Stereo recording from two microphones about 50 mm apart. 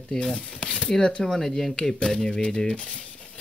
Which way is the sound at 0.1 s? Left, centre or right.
Centre.